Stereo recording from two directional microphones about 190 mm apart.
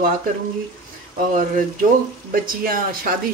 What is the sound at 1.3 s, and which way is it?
Speech, 45° right (ahead or behind).